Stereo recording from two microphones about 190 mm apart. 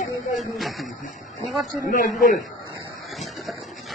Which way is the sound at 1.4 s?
45° left (ahead or behind).